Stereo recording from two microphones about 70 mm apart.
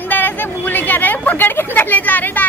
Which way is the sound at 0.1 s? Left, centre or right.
Left.